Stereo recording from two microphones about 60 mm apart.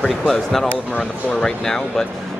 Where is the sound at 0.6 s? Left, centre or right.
Left.